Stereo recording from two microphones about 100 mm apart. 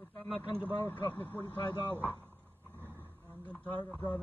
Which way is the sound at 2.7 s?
20° right (ahead or behind).